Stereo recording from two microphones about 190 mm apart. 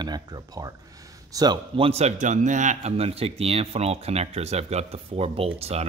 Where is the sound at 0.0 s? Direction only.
20° right (ahead or behind).